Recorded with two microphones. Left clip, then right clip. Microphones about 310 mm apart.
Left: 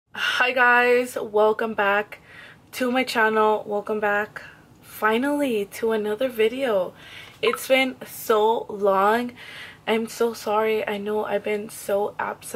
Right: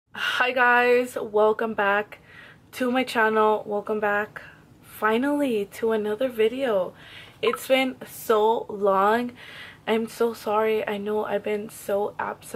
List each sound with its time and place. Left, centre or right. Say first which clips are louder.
0.1 s speech: left 2 dB; centre
3.5 s speech: left 1 dB; right
3.9 s speech: left 1 dB; centre
8.5 s speech: left 1 dB; right
8.8 s speech: left 1 dB; centre